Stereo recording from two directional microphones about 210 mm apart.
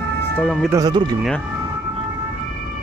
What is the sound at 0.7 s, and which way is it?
Speech, 20° right (ahead or behind).